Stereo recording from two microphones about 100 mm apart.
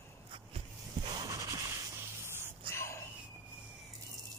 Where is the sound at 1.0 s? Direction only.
40° right (ahead or behind).